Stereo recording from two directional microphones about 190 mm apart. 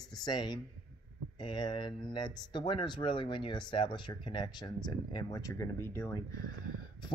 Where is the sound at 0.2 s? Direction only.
20° left (ahead or behind).